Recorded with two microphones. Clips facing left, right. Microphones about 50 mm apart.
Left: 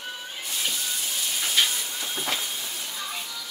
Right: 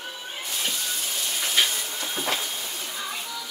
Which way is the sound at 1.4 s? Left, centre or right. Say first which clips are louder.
Right 1 dB; centre.